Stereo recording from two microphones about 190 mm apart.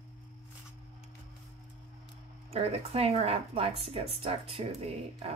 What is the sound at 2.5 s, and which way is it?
Speech, 30° right (ahead or behind).